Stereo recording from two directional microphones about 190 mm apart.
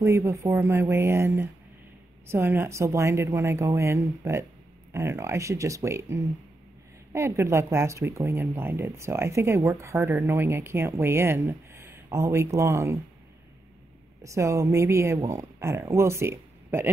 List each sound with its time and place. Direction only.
0.0 s speech: 15° right (ahead or behind)
14.2 s speech: 15° right (ahead or behind)